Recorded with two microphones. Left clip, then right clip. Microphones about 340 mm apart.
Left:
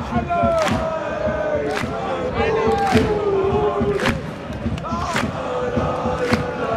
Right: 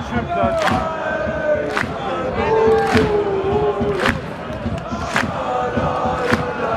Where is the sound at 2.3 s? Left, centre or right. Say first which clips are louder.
Right 4 dB; centre.